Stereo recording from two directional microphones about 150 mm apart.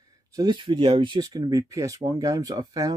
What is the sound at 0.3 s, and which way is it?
Speech, 25° right (ahead or behind).